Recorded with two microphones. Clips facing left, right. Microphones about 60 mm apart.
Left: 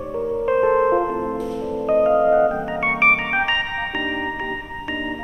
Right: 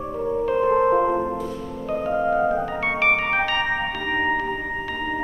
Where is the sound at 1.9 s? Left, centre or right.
Left.